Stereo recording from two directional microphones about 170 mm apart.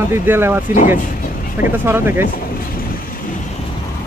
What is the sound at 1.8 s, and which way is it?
Speech, 15° right (ahead or behind).